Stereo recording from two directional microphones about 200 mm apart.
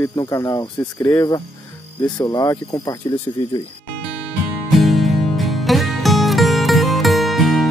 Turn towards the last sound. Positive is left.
turn(degrees=0)  # may be behind; listen again after turning